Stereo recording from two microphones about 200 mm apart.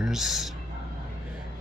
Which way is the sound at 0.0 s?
Centre (ahead or behind).